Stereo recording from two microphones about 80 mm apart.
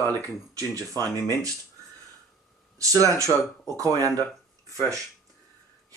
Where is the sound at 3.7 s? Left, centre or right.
Right.